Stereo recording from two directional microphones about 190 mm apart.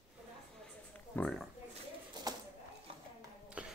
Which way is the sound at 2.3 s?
20° right (ahead or behind).